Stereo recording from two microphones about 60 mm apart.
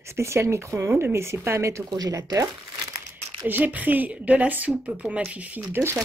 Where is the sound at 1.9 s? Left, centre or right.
Right.